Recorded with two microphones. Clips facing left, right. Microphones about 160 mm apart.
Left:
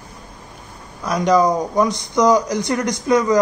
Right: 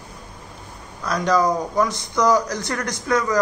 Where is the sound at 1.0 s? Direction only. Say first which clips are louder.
Left 4 dB; 15° left (ahead or behind).